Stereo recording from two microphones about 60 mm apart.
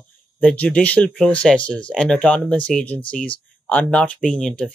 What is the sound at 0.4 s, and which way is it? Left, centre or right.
Speech, centre.